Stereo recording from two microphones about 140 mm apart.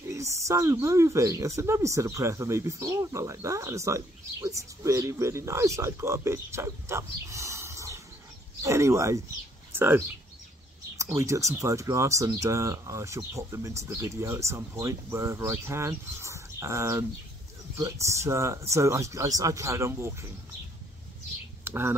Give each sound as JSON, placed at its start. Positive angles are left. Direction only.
{"t": 0.5, "sound": "speech", "side_deg": -20}
{"t": 11.1, "sound": "speech", "side_deg": -20}
{"t": 21.6, "sound": "speech", "side_deg": -15}